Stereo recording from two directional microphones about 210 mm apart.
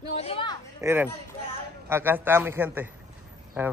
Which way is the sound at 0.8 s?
10° right (ahead or behind).